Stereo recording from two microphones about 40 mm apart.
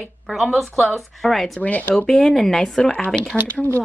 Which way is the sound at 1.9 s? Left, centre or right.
Centre.